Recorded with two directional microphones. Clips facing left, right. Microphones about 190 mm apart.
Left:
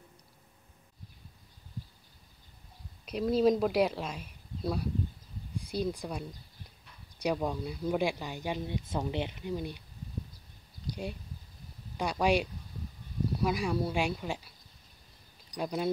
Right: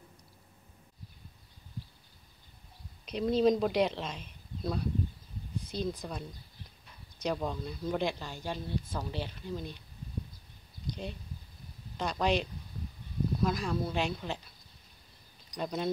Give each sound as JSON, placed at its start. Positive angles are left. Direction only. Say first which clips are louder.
{"t": 3.1, "sound": "speech", "louder": "even", "side_deg": 5}
{"t": 10.9, "sound": "a sound", "louder": "left 2 dB", "side_deg": 10}
{"t": 12.0, "sound": "speech", "louder": "left 2 dB", "side_deg": 10}
{"t": 15.5, "sound": "speech", "louder": "left 1 dB", "side_deg": 5}